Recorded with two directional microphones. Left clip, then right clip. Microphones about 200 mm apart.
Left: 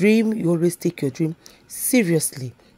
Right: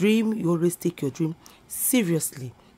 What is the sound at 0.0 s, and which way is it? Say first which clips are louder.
Speech: left 5 dB; 10° left (ahead or behind).